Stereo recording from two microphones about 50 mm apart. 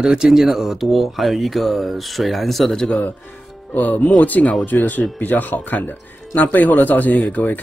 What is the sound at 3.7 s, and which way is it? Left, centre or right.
A man's voice, left.